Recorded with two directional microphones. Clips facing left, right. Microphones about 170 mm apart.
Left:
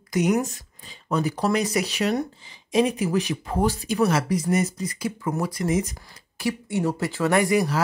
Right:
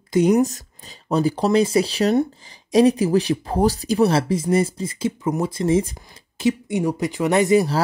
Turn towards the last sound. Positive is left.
turn(degrees=-30)  # may be behind; listen again after turning